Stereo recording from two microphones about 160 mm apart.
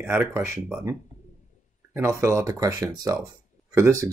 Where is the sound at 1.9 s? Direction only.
15° right (ahead or behind).